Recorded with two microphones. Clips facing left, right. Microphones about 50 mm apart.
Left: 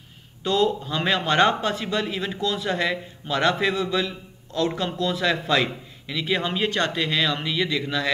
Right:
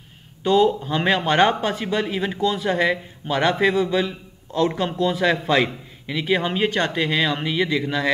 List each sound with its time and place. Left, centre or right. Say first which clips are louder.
0.4 s speech: right 4 dB; centre